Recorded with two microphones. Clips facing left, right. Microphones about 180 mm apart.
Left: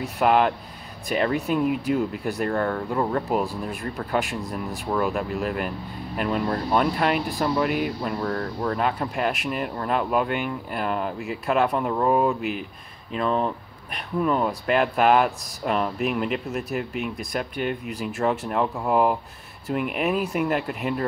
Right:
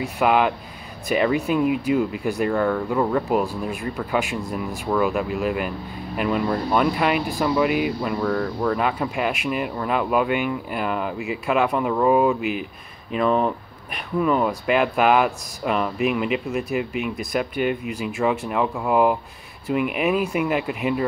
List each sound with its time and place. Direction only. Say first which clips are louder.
0.2 s speech: even; 5° right (ahead or behind)